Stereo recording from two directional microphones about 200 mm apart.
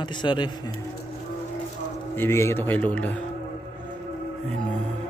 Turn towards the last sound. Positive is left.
turn(degrees=5)  # may be behind; listen again after turning